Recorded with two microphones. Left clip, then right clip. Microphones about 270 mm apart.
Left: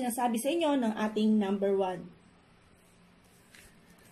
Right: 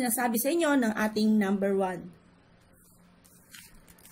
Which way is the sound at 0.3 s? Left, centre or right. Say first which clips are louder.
Right 4 dB; right.